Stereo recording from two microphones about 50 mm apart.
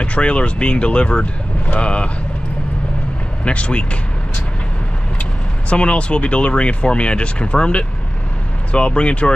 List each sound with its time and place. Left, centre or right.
0.0 s speech: left
3.4 s speech: left
5.7 s speech: left